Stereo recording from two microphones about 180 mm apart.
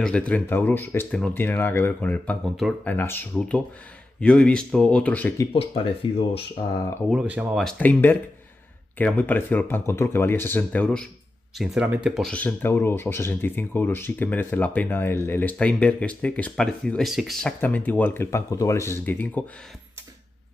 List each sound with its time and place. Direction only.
0.0 s speech: 5° left (ahead or behind)
6.0 s speech: 30° left (ahead or behind)
7.1 s speech: 5° right (ahead or behind)
7.6 s speech: 10° left (ahead or behind)